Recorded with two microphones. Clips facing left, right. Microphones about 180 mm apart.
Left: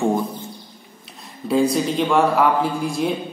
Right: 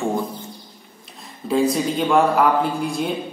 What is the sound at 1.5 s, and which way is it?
A man's voice, centre (ahead or behind).